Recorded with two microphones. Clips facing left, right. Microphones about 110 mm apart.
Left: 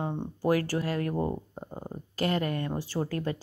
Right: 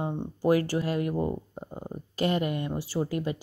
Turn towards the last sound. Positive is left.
turn(degrees=-10)  # may be behind; listen again after turning